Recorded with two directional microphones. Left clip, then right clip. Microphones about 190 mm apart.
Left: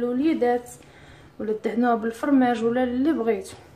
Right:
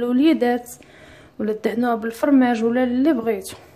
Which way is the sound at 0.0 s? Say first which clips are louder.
Right 4 dB; 45° right (ahead or behind).